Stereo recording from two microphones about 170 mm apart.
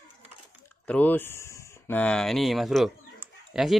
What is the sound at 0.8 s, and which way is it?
Speech, 10° left (ahead or behind).